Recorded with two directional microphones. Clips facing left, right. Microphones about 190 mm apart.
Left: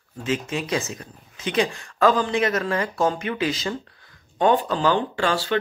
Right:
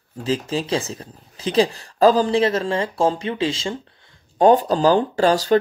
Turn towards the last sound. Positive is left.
turn(degrees=-40)  # may be behind; listen again after turning